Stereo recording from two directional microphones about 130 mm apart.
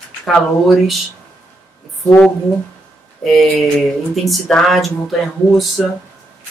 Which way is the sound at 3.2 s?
Centre (ahead or behind).